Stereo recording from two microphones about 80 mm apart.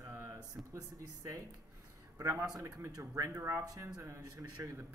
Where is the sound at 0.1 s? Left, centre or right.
Right.